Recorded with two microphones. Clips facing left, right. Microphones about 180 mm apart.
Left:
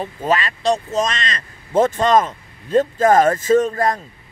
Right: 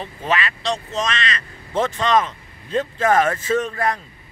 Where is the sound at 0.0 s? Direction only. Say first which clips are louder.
Left 3 dB; 40° left (ahead or behind).